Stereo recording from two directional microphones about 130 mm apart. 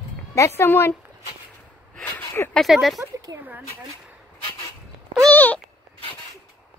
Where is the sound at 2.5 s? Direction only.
Centre (ahead or behind).